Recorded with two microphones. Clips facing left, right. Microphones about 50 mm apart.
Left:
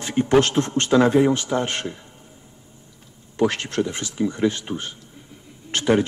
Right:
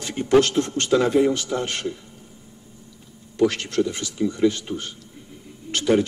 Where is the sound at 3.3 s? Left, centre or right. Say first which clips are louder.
Right 1 dB; left.